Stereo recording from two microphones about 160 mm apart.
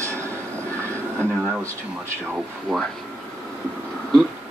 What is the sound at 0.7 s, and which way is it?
Train, 10° left (ahead or behind).